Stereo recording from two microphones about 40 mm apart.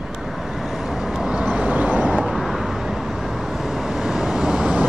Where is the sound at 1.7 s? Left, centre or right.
Right.